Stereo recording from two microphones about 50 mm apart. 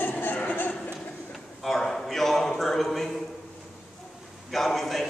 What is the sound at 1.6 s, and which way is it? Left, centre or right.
Speech, centre.